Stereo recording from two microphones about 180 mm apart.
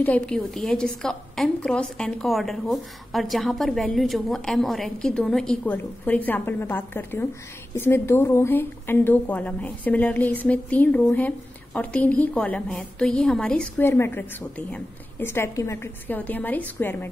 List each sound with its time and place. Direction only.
0.0 s a woman's voice: 5° left (ahead or behind)